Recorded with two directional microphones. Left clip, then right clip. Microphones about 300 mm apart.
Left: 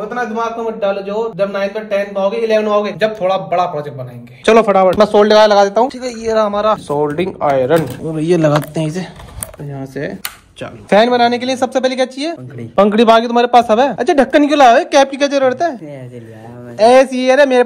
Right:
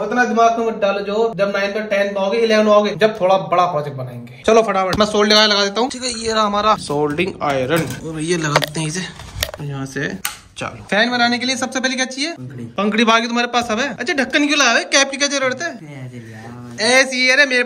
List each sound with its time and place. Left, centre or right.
0.7 s speech: centre
4.5 s speech: left
4.9 s speech: centre
10.9 s speech: centre